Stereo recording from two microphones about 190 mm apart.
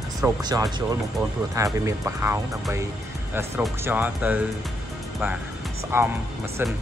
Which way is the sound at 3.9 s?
10° right (ahead or behind).